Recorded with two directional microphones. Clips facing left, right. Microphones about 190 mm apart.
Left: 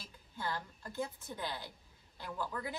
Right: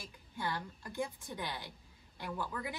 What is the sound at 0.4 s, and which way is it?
Speech, 15° right (ahead or behind).